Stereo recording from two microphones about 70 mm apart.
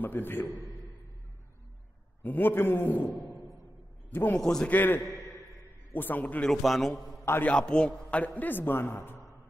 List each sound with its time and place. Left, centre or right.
0.0 s a man's voice: left
2.2 s a man's voice: left
4.4 s a man's voice: centre
4.6 s a man's voice: left
6.4 s a man's voice: centre
7.4 s a man's voice: centre; by 9.2 s left